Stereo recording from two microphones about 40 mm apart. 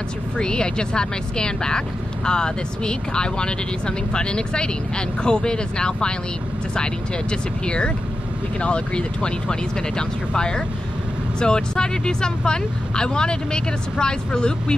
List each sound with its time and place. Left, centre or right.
0.4 s speech: left